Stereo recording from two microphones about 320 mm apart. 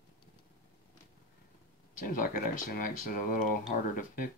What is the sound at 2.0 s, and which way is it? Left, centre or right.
Speech, left.